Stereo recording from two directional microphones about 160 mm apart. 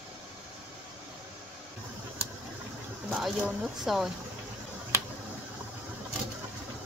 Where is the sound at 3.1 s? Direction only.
5° right (ahead or behind).